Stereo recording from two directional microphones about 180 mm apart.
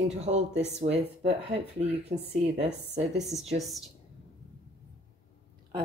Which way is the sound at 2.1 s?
40° right (ahead or behind).